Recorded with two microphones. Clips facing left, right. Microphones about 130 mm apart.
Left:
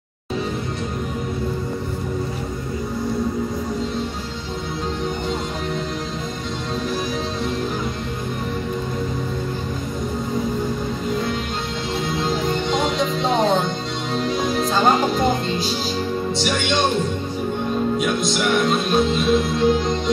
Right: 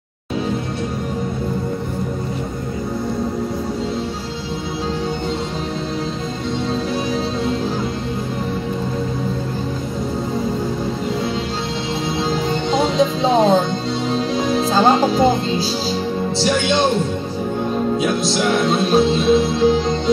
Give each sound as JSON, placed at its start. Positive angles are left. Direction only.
{"t": 12.2, "sound": "music", "side_deg": -30}
{"t": 17.9, "sound": "music", "side_deg": -30}